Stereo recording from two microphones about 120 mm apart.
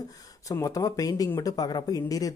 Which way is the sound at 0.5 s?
30° left (ahead or behind).